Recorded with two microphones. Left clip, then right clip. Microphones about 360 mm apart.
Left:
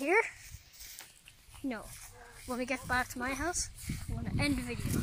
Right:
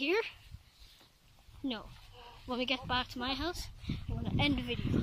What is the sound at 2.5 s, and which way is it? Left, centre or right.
Speech, centre.